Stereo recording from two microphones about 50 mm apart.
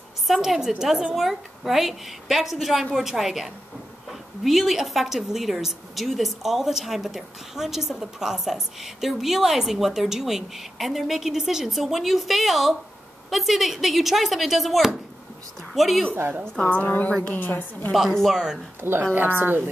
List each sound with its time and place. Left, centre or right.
0.3 s a woman's voice: centre
16.1 s a woman's voice: right
16.5 s a woman's voice: left
16.8 s a woman's voice: left
18.3 s a woman's voice: centre
18.8 s a woman's voice: right